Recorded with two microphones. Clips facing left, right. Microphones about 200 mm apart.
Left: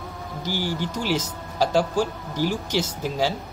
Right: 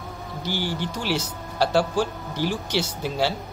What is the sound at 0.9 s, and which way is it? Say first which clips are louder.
Speech: left 3 dB; 45° left (ahead or behind).